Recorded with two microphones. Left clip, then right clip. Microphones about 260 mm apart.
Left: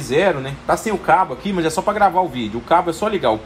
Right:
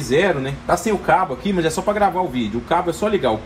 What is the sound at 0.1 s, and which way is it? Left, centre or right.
Speech, left.